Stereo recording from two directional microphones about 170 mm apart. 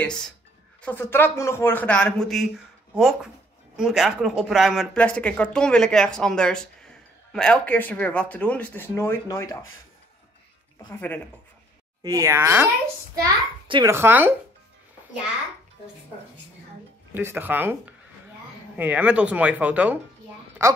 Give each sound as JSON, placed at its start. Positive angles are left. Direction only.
{"t": 0.0, "sound": "speech", "side_deg": 5}
{"t": 10.9, "sound": "speech", "side_deg": 10}
{"t": 12.0, "sound": "speech", "side_deg": -20}
{"t": 13.1, "sound": "a child's voice", "side_deg": -25}
{"t": 13.9, "sound": "speech", "side_deg": -15}
{"t": 17.1, "sound": "speech", "side_deg": -10}